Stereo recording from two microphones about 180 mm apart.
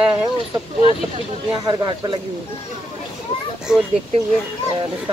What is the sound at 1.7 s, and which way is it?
Speech, 25° right (ahead or behind).